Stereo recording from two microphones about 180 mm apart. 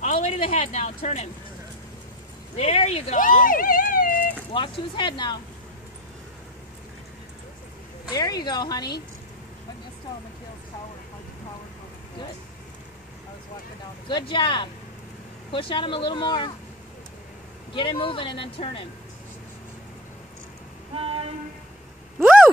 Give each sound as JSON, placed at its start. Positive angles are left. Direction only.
{"t": 0.0, "sound": "speech", "side_deg": 40}
{"t": 2.5, "sound": "speech", "side_deg": 35}
{"t": 4.5, "sound": "speech", "side_deg": 30}
{"t": 8.1, "sound": "speech", "side_deg": 20}
{"t": 14.0, "sound": "speech", "side_deg": 25}
{"t": 17.7, "sound": "speech", "side_deg": 30}
{"t": 20.9, "sound": "a sound", "side_deg": -30}